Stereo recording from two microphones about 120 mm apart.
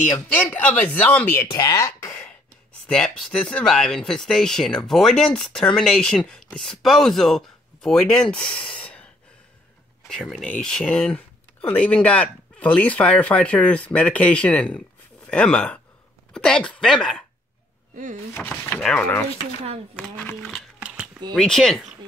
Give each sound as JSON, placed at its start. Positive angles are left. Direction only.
{"t": 0.5, "sound": "speech", "side_deg": 15}
{"t": 1.5, "sound": "speech", "side_deg": 35}
{"t": 2.9, "sound": "speech", "side_deg": 5}
{"t": 18.3, "sound": "speech", "side_deg": 15}
{"t": 18.8, "sound": "speech", "side_deg": 5}
{"t": 20.4, "sound": "music", "side_deg": 0}
{"t": 21.3, "sound": "speech", "side_deg": 5}